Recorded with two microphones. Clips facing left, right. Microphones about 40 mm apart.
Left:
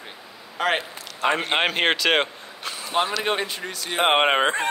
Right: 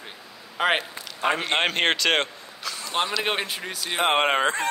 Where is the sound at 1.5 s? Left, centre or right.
Centre.